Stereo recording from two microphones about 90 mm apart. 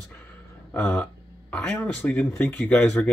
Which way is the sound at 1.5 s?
10° left (ahead or behind).